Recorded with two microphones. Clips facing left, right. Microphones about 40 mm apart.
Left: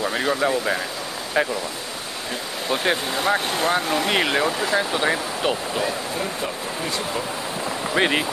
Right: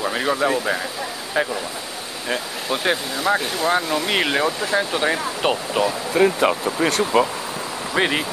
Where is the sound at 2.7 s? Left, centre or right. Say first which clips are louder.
Even; centre.